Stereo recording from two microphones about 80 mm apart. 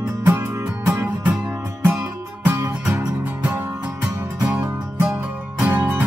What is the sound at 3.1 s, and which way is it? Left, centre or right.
Music, centre.